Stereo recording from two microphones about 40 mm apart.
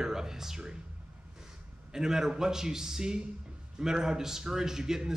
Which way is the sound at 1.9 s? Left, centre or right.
Centre.